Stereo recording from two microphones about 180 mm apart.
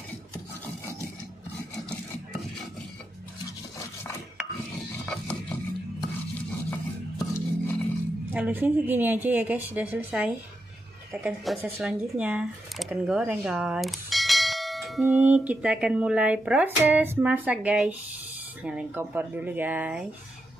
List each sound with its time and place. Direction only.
5.0 s music: 5° left (ahead or behind)
7.2 s music: 15° left (ahead or behind)
8.3 s speech: 10° right (ahead or behind)